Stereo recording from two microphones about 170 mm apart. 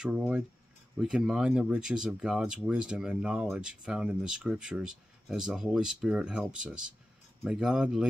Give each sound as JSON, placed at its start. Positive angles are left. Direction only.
{"t": 0.0, "sound": "speech", "side_deg": -5}